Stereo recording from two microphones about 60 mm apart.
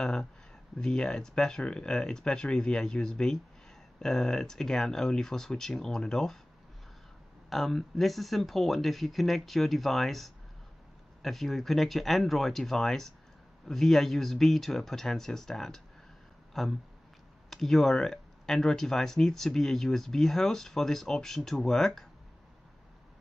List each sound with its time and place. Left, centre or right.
0.0 s speech: centre
7.4 s speech: centre